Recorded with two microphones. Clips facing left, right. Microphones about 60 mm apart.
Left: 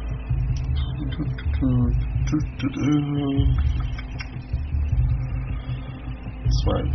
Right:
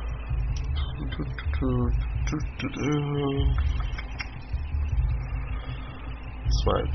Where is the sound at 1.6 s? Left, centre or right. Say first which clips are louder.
Left 5 dB; right.